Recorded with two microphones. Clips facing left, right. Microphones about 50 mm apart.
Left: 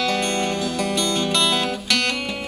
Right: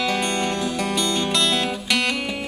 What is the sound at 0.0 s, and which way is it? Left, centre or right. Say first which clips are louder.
Music: left 1 dB; centre.